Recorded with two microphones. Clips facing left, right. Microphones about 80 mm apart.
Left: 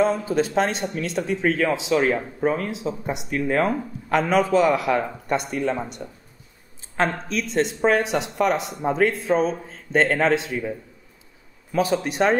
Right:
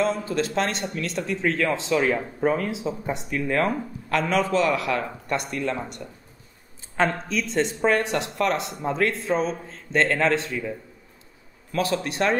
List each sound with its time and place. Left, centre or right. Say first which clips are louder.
0.2 s speech: left 3 dB; centre
7.0 s speech: even; centre
8.8 s speech: left 4 dB; left
9.4 s speech: left 3 dB; centre
10.5 s speech: left 2 dB; centre
12.0 s speech: left 3 dB; left